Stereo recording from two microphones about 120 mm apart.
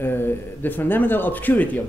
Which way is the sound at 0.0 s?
20° left (ahead or behind).